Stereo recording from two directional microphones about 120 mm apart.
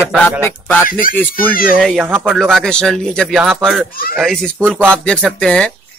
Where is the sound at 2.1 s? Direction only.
20° right (ahead or behind).